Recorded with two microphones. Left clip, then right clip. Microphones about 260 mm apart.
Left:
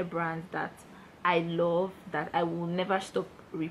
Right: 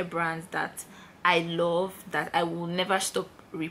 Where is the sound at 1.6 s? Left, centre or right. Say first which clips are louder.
Right 2 dB; left.